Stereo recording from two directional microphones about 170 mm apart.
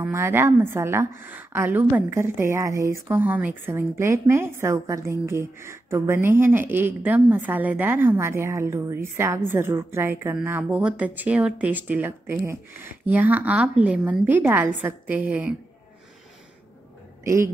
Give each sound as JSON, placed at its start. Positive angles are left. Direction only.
{"t": 0.0, "sound": "a woman's voice", "side_deg": -15}
{"t": 17.2, "sound": "a man's voice", "side_deg": -15}